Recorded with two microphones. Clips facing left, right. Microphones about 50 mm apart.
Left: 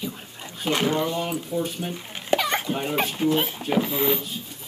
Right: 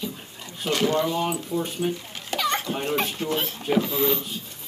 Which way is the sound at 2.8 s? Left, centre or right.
Centre.